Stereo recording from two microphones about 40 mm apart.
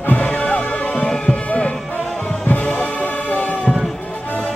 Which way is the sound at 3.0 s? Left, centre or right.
Left.